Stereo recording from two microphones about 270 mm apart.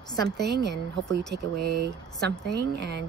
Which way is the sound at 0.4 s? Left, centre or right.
Right.